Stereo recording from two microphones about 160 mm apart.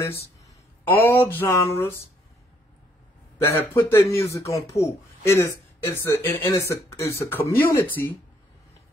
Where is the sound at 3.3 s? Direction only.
15° left (ahead or behind).